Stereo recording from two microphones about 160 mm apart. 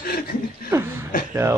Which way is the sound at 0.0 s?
70° left (ahead or behind).